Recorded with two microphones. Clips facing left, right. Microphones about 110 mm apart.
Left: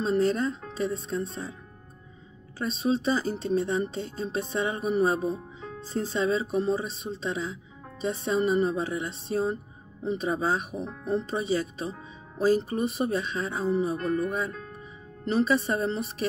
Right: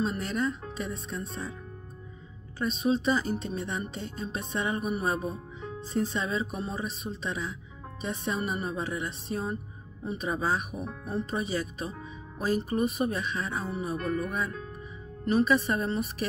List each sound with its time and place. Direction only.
0.2 s speech: 30° left (ahead or behind)
2.7 s speech: 30° left (ahead or behind)